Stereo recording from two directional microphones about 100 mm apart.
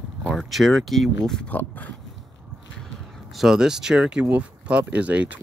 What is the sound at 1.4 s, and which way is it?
Speech, 15° left (ahead or behind).